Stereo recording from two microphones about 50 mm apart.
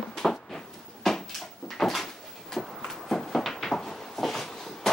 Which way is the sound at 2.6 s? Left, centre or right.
Centre.